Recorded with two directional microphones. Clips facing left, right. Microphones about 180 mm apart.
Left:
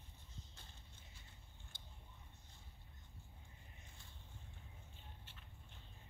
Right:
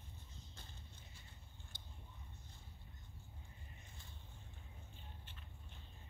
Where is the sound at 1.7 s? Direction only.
40° right (ahead or behind).